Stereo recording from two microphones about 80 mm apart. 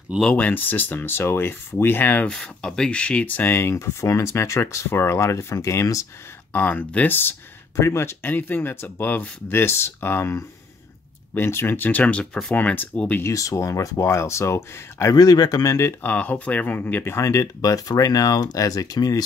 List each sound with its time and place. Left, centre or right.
0.2 s speech: centre
2.2 s speech: centre; by 6.0 s left
6.5 s speech: left
7.7 s speech: left
11.3 s speech: left
13.3 s speech: left
15.1 s speech: left
16.0 s speech: left